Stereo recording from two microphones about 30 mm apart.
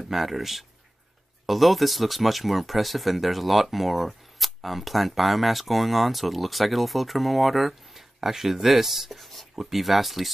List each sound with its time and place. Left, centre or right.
0.1 s speech: centre
9.2 s writing: centre
9.6 s speech: centre